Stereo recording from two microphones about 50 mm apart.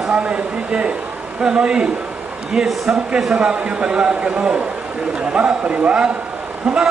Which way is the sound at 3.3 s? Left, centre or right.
Right.